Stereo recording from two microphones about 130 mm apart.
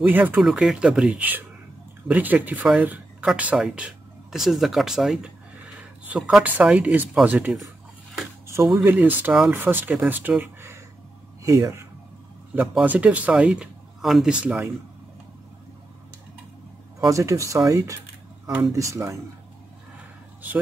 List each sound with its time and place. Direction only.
0.0 s speech: 15° right (ahead or behind)
0.4 s speech: centre (ahead or behind)
8.5 s a sound: 20° right (ahead or behind)
8.8 s speech: 15° right (ahead or behind)
10.4 s a sound: 20° right (ahead or behind)
11.4 s speech: 25° right (ahead or behind)
12.8 s speech: 10° right (ahead or behind)
17.0 s speech: 25° right (ahead or behind)